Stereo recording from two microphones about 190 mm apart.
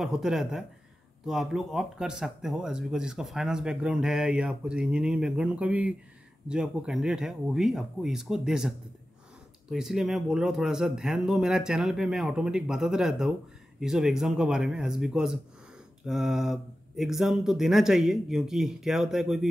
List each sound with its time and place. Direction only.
0.0 s speech: centre (ahead or behind)